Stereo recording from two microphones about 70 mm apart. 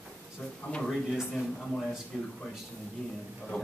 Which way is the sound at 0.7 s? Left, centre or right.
Centre.